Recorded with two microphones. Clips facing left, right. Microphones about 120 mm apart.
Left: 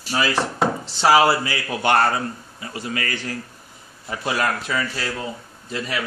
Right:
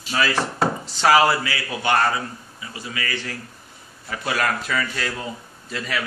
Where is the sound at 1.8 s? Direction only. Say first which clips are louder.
Left 2 dB; 50° left (ahead or behind).